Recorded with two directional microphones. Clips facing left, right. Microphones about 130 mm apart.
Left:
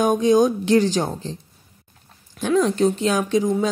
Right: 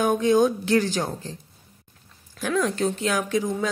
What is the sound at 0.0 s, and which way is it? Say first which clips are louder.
Speech: left 3 dB; 15° left (ahead or behind).